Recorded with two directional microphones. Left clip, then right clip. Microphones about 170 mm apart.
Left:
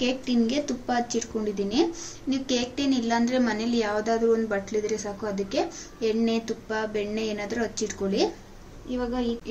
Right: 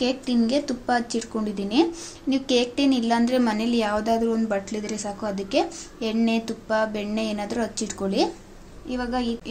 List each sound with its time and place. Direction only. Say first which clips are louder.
0.0 s speech: right 2 dB; 35° right (ahead or behind)
8.9 s a woman's voice: right 2 dB; 30° right (ahead or behind)